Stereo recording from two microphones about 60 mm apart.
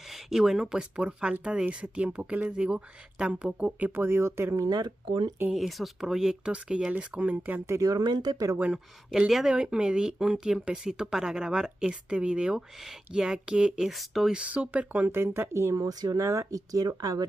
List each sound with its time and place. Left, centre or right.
0.1 s speech: centre
3.9 s speech: right
5.6 s speech: centre; by 7.6 s right
7.8 s speech: right
8.7 s speech: centre
13.8 s speech: centre
14.3 s speech: right
15.0 s speech: right
15.7 s speech: right